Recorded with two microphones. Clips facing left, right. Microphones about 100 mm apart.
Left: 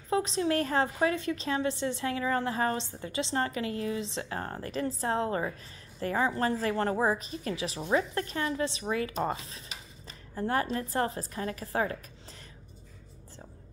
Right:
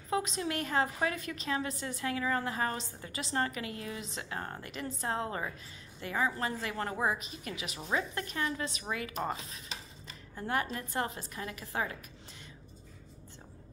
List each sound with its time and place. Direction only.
0.1 s a woman's voice: 30° left (ahead or behind)
10.0 s a woman's voice: 30° left (ahead or behind)